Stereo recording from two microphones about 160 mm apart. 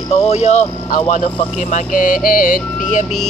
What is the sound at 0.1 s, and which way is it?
Speech, 45° left (ahead or behind).